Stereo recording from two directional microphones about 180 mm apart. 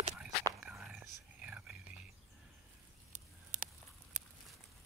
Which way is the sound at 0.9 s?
5° right (ahead or behind).